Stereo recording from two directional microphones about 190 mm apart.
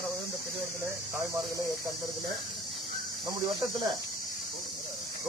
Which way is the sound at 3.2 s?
20° right (ahead or behind).